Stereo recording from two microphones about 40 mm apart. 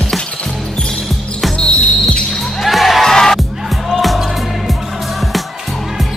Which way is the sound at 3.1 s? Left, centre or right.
Centre.